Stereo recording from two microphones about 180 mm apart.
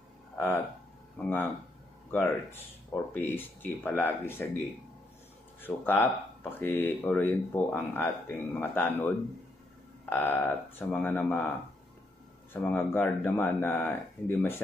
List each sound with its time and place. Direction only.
1.1 s speech: 10° left (ahead or behind)
12.5 s speech: 10° left (ahead or behind)